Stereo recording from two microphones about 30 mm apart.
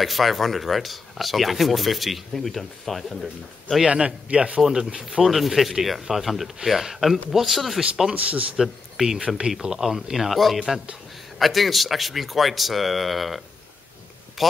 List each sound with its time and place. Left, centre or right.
0.0 s speech: centre
3.8 s a man's voice: right
4.6 s speech: centre
5.2 s speech: centre
8.2 s speech: right
9.0 s speech: centre
10.3 s speech: centre